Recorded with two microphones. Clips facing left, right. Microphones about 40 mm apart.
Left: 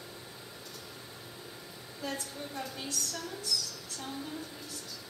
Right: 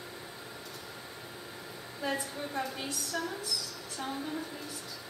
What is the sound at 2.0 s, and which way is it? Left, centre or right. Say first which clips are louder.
A woman's voice: right 4 dB; centre.